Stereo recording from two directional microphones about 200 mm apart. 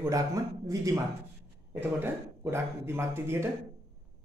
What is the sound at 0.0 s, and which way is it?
Speech, 15° right (ahead or behind).